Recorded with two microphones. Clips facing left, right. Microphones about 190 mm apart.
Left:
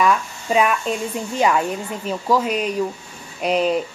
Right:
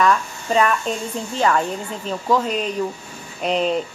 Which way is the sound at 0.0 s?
10° left (ahead or behind).